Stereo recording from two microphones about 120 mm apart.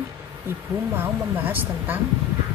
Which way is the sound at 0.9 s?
15° right (ahead or behind).